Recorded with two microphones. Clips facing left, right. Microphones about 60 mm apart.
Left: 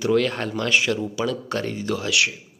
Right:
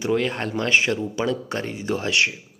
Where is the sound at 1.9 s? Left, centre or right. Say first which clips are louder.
Right 2 dB; right.